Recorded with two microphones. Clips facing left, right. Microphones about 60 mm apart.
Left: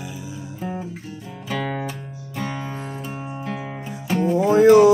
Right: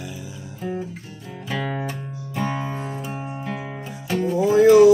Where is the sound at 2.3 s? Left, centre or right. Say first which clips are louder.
Right 3 dB; right.